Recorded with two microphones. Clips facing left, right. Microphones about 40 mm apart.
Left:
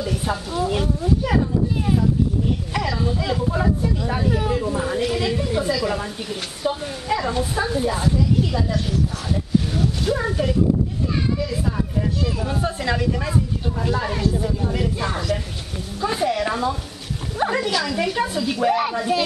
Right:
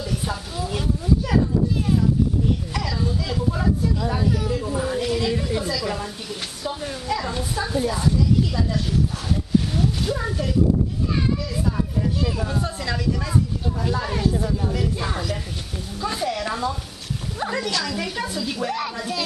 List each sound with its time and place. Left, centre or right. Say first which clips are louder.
0.0 s a woman's voice: left 3 dB; centre
2.7 s a woman's voice: left 3 dB; centre
4.3 s speech: left 2 dB; left
4.6 s a woman's voice: left 2 dB; centre
11.3 s a sound: left 3 dB; centre
12.2 s a woman's voice: even; centre
12.4 s a woman's voice: left 3 dB; centre
16.0 s a woman's voice: left 4 dB; centre